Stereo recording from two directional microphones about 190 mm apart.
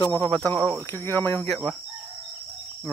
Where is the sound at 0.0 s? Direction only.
15° left (ahead or behind).